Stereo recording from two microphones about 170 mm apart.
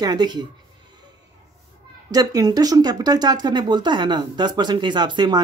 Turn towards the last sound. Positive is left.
turn(degrees=-25)  # may be behind; listen again after turning